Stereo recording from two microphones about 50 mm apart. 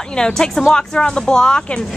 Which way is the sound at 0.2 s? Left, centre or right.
Centre.